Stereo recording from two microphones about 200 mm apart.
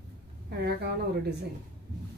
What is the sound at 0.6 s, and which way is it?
Speech, 55° right (ahead or behind).